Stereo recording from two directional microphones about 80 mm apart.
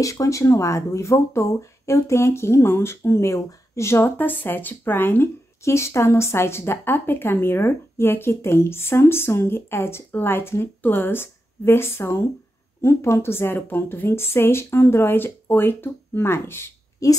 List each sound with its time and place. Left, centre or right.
0.0 s speech: left
17.0 s a woman's voice: left